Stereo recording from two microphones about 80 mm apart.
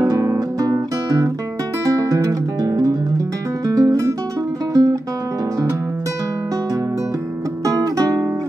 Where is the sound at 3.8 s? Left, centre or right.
Right.